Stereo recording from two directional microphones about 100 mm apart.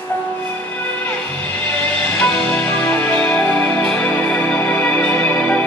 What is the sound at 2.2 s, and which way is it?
Music, 10° left (ahead or behind).